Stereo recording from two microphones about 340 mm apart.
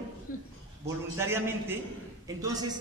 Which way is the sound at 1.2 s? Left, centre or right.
Centre.